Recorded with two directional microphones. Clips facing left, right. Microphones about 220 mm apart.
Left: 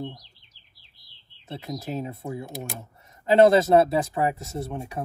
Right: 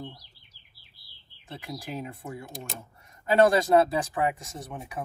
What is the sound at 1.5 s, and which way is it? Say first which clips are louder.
Speech: left 5 dB; 25° left (ahead or behind).